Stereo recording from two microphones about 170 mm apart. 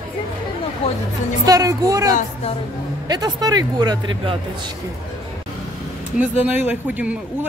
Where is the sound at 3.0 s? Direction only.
25° right (ahead or behind).